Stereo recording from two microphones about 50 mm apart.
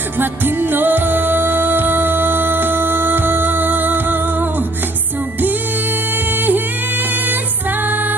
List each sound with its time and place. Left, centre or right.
0.2 s music: right